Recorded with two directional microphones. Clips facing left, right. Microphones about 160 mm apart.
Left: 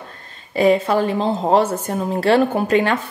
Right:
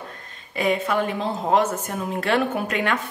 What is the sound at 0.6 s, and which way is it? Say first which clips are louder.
A woman's voice: left 7 dB; 30° left (ahead or behind).